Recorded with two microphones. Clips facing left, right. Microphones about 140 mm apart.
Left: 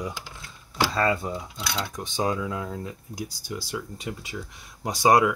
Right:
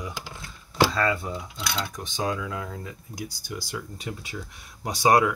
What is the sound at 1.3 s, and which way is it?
Speech, 10° left (ahead or behind).